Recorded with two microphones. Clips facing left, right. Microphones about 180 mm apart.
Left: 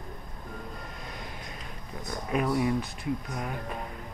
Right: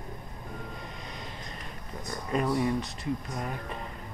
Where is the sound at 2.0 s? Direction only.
5° left (ahead or behind).